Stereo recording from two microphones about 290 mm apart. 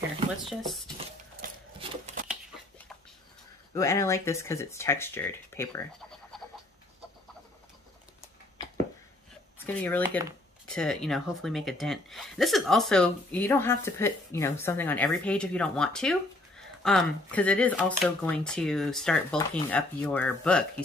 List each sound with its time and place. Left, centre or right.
0.5 s a woman's voice: centre
0.9 s a sound: right
3.7 s speech: centre
10.2 s a woman's voice: centre